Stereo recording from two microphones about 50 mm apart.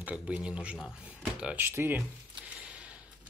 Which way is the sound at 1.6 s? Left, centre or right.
Right.